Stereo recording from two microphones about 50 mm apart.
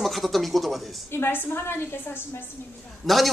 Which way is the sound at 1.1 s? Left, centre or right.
Left.